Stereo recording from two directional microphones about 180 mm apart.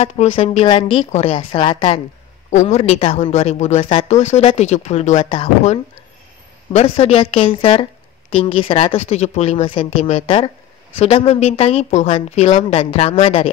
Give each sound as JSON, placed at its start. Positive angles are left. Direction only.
{"t": 0.0, "sound": "speech", "side_deg": 35}
{"t": 2.5, "sound": "speech", "side_deg": 40}